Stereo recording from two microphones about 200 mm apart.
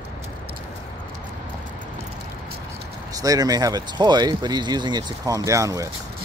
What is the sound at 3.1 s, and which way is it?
Speech, 15° right (ahead or behind).